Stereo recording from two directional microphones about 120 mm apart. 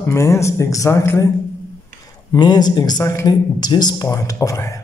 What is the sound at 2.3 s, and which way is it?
Speech, 35° left (ahead or behind).